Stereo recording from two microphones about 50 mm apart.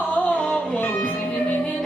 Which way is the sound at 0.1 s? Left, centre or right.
Left.